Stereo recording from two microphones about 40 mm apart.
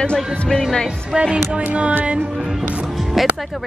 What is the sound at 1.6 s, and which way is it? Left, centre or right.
Music, right.